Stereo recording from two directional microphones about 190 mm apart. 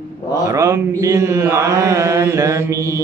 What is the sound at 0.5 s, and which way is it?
Mantra, 15° right (ahead or behind).